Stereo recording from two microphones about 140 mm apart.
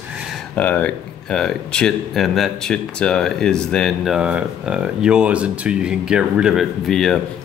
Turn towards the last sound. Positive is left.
turn(degrees=0)  # may be behind; listen again after turning